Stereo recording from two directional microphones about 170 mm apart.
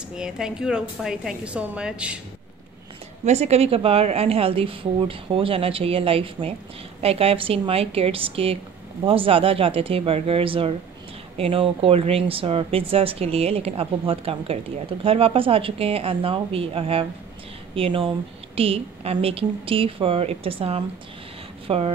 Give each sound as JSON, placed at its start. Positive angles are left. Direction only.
{"t": 0.1, "sound": "a woman's voice", "side_deg": -5}
{"t": 3.3, "sound": "speech", "side_deg": -40}